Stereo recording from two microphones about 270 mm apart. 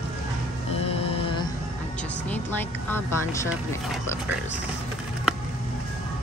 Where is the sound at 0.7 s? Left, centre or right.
Left.